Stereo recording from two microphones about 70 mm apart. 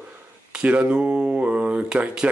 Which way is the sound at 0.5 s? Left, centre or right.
Centre.